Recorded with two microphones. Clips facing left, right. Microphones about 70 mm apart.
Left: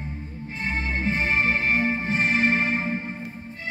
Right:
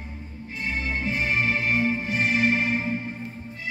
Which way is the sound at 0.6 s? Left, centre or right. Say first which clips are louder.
Left 1 dB; left.